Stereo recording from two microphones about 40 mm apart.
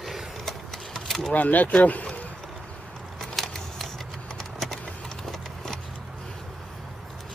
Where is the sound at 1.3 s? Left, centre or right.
Left.